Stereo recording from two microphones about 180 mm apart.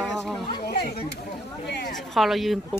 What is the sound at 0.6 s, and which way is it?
Speech, 60° left (ahead or behind).